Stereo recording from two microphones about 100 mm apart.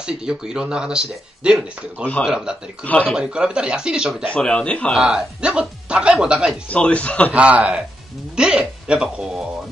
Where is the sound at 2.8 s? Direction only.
15° left (ahead or behind).